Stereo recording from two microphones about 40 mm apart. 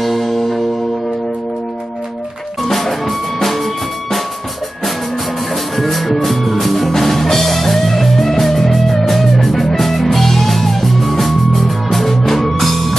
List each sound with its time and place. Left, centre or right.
0.0 s music: centre
2.6 s music: centre
5.5 s music: centre